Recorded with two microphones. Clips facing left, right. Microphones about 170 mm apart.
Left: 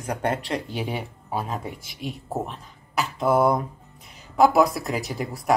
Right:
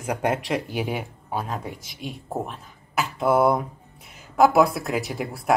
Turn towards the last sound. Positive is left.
turn(degrees=0)  # may be behind; listen again after turning